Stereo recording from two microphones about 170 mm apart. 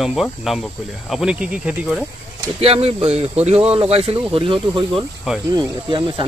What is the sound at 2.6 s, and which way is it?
Speech, 35° right (ahead or behind).